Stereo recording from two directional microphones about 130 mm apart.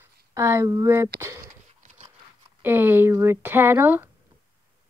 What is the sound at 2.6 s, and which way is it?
Speech, 15° right (ahead or behind).